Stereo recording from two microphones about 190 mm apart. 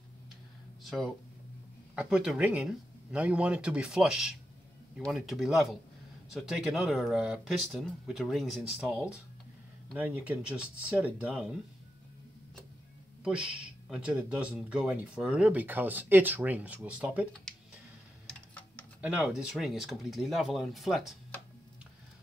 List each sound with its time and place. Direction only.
0.8 s speech: centre (ahead or behind)
13.2 s speech: 5° right (ahead or behind)
18.5 s typing: 10° left (ahead or behind)
18.9 s speech: 5° right (ahead or behind)